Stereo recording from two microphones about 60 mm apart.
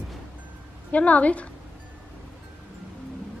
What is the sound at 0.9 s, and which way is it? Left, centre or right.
Speech, left.